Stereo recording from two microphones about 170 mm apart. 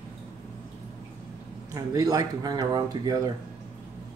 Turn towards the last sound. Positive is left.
turn(degrees=-25)  # may be behind; listen again after turning